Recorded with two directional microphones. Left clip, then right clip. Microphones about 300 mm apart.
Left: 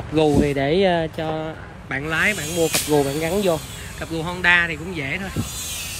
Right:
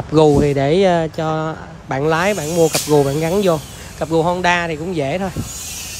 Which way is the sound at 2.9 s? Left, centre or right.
Left.